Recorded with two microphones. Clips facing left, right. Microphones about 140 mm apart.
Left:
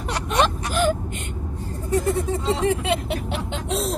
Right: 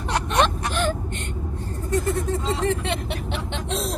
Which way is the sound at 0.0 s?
5° left (ahead or behind).